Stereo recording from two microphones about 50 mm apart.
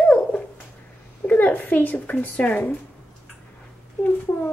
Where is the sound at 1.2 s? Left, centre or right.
Left.